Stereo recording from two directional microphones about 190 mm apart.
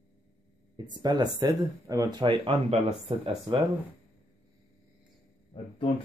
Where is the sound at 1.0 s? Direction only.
20° right (ahead or behind).